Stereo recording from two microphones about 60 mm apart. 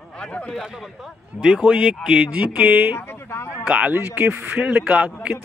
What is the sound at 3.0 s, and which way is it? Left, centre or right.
Speech, left.